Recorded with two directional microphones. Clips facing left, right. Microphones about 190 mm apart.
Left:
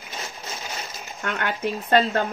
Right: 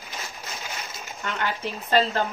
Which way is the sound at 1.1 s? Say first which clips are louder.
Left 2 dB; 55° left (ahead or behind).